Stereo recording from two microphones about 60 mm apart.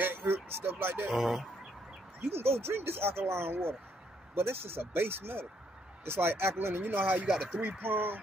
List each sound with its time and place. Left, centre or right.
0.0 s a sound: right
1.0 s speech: centre
2.4 s speech: right